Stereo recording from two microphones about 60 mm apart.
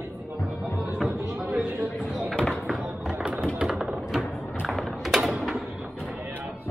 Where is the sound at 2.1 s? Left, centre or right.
Centre.